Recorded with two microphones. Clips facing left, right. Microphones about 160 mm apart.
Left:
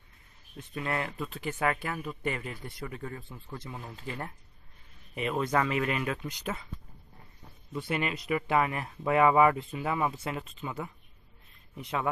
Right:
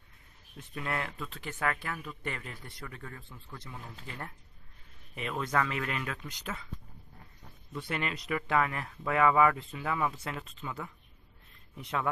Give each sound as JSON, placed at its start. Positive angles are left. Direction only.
{"t": 0.7, "sound": "speech", "side_deg": 5}
{"t": 5.3, "sound": "speech", "side_deg": 20}
{"t": 7.7, "sound": "speech", "side_deg": 10}